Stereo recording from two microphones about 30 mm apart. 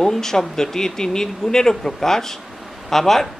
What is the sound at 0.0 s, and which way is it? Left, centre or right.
A man's voice, centre.